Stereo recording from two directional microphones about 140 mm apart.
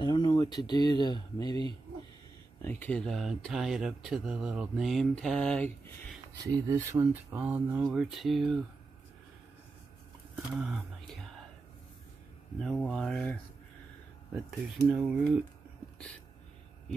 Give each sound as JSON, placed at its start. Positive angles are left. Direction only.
{"t": 0.0, "sound": "speech", "side_deg": 30}
{"t": 2.6, "sound": "speech", "side_deg": 15}
{"t": 6.3, "sound": "speech", "side_deg": -25}
{"t": 10.6, "sound": "speech", "side_deg": 0}
{"t": 12.5, "sound": "speech", "side_deg": 5}
{"t": 14.9, "sound": "speech", "side_deg": -5}